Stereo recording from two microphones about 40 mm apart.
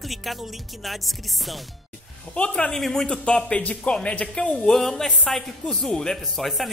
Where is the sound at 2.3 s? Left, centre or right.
Left.